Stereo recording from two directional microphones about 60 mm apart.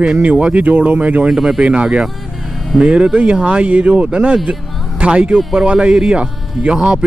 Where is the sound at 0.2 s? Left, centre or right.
Right.